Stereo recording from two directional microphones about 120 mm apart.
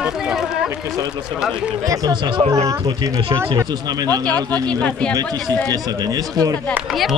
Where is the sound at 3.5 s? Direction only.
30° right (ahead or behind).